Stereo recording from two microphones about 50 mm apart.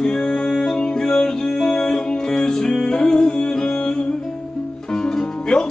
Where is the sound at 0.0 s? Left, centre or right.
Centre.